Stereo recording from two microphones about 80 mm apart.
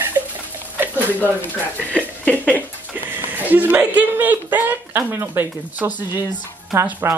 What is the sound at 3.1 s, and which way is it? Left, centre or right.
Speech, right.